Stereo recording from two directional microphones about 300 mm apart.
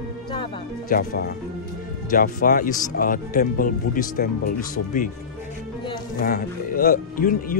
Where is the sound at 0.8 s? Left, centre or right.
Left.